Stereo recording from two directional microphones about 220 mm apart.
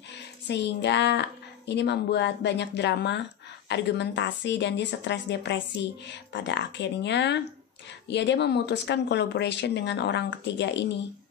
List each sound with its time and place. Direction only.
0.5 s speech: 50° left (ahead or behind)